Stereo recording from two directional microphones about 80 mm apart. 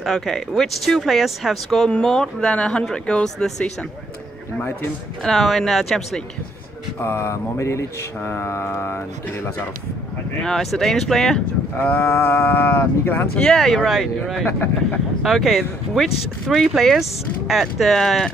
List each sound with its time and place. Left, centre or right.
0.0 s speech: centre
5.2 s speech: centre
7.0 s speech: left
10.4 s speech: centre
11.8 s speech: centre
13.4 s speech: centre